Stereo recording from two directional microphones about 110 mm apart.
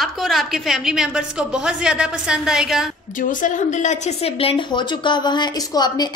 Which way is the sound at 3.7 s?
90° left.